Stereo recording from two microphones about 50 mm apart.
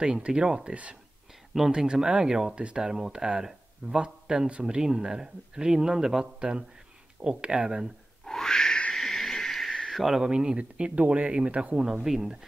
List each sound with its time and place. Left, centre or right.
0.0 s speech: centre
8.3 s a sound: centre
9.9 s speech: centre
10.2 s speech: centre